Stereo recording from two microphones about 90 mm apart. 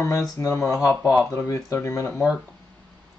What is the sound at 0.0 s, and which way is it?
Speech, 35° left (ahead or behind).